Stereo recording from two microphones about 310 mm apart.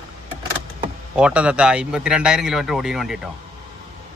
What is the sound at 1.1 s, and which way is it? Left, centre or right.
Speech, centre.